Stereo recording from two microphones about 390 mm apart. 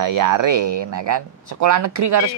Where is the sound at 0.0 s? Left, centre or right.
Right.